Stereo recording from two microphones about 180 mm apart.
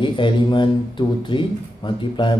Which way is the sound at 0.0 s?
25° left (ahead or behind).